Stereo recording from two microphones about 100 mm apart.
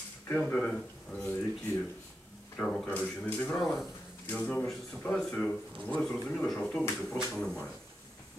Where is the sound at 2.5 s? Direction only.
5° left (ahead or behind).